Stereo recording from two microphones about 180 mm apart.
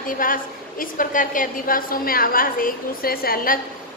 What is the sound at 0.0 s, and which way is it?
A woman's voice, 50° left (ahead or behind).